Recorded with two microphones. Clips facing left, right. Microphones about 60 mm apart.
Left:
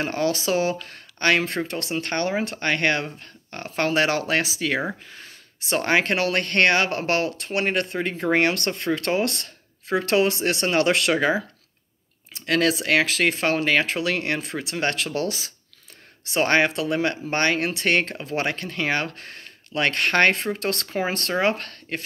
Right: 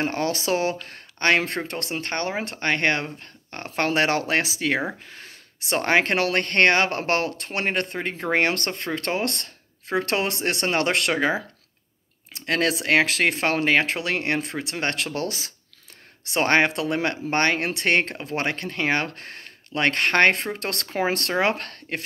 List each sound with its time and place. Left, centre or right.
0.0 s speech: right
2.0 s speech: right
3.5 s speech: right
8.1 s speech: right
8.4 s speech: right
12.4 s speech: right
13.3 s speech: right
14.0 s speech: right
21.4 s speech: right